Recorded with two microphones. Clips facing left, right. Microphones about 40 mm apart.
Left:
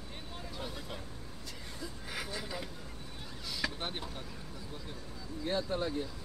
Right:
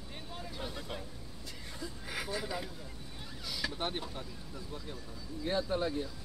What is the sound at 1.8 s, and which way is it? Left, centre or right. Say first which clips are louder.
Chuckle: right 2 dB; centre.